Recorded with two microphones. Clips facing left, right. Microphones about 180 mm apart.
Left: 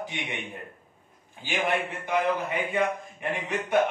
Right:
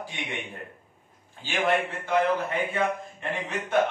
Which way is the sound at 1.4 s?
15° left (ahead or behind).